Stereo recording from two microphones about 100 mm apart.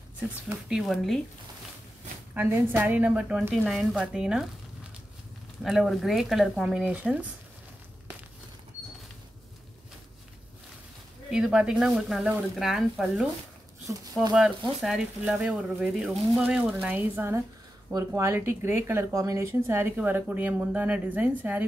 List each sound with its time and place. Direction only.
0.5 s speech: 5° right (ahead or behind)
2.3 s speech: 20° right (ahead or behind)
5.6 s speech: centre (ahead or behind)
11.2 s speech: 10° right (ahead or behind)
13.9 s speech: 25° right (ahead or behind)
14.8 s speech: 5° right (ahead or behind); by 17.4 s 20° right (ahead or behind)
17.9 s speech: 30° right (ahead or behind); by 21.6 s 15° right (ahead or behind)